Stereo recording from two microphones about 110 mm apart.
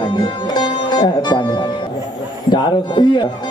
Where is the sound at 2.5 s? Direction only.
45° left (ahead or behind).